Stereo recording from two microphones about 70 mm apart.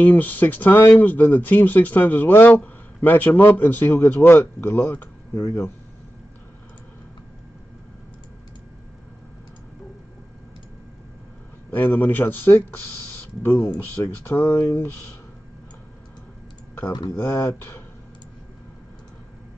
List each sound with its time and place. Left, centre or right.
0.0 s speech: left
11.7 s speech: left
13.4 s speech: left
13.7 s speech: left
17.2 s speech: left